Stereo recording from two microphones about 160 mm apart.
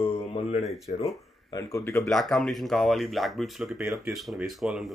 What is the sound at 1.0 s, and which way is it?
Speech, 20° left (ahead or behind).